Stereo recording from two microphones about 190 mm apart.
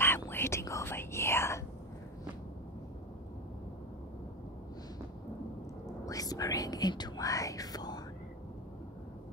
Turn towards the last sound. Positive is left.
turn(degrees=20)  # may be behind; listen again after turning